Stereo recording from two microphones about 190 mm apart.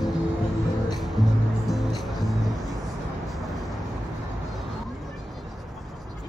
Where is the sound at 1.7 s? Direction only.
Centre (ahead or behind).